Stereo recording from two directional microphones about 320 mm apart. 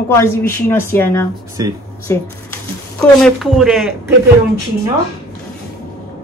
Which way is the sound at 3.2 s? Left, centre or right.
Centre.